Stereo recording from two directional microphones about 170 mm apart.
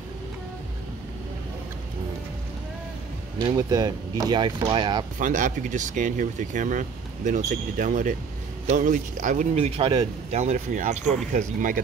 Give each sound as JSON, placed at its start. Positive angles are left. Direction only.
{"t": 3.3, "sound": "speech", "side_deg": -20}
{"t": 5.2, "sound": "speech", "side_deg": -50}
{"t": 9.7, "sound": "speech", "side_deg": -30}